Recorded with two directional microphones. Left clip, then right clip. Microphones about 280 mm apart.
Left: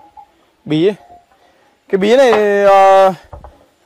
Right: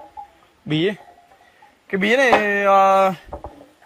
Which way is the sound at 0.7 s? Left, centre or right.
Centre.